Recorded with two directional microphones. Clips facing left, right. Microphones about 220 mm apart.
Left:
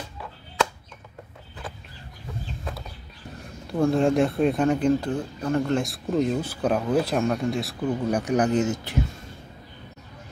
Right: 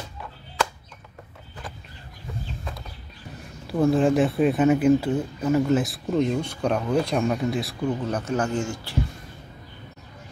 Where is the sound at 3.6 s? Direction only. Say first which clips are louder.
Right 1 dB; centre (ahead or behind).